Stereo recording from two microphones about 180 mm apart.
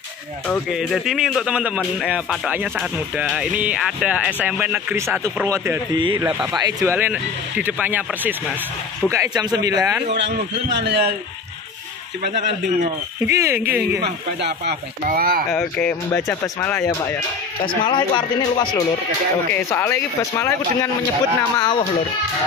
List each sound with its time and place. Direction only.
0.5 s speech: centre (ahead or behind)
5.9 s speech: 25° right (ahead or behind)
10.8 s a man's voice: 70° right (ahead or behind)
12.2 s speech: 45° right (ahead or behind)
13.2 s speech: 15° right (ahead or behind)
14.4 s speech: 60° right (ahead or behind)
15.6 s speech: 10° left (ahead or behind)
17.8 s speech: 25° left (ahead or behind)
19.5 s speech: 15° left (ahead or behind)